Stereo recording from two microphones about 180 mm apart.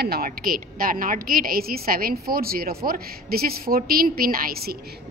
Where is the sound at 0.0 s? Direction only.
55° right (ahead or behind).